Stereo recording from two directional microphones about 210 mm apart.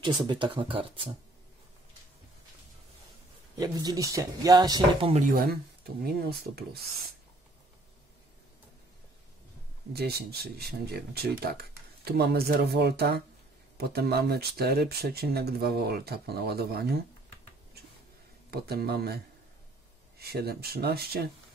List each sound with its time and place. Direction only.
0.0 s speech: 20° right (ahead or behind)
3.5 s speech: 20° right (ahead or behind)
5.1 s speech: 40° right (ahead or behind)
9.9 s speech: 50° right (ahead or behind)
18.5 s speech: 50° right (ahead or behind)